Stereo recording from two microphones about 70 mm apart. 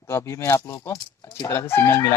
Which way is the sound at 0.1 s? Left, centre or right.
Left.